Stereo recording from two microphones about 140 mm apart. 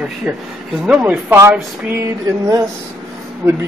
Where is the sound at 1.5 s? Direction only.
15° right (ahead or behind).